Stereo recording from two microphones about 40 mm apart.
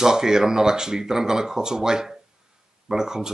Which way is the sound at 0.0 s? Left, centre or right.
Centre.